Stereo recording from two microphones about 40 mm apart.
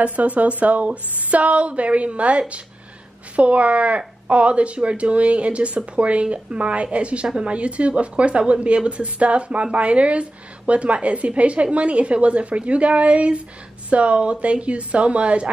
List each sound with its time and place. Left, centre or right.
0.0 s a woman's voice: right